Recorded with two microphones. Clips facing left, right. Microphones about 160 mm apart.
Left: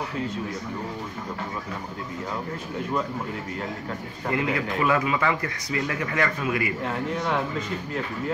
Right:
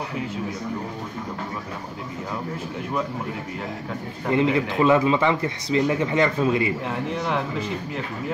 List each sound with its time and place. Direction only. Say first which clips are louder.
4.3 s speech: right 5 dB; 25° right (ahead or behind)